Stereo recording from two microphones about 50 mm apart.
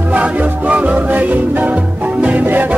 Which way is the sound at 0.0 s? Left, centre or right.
Right.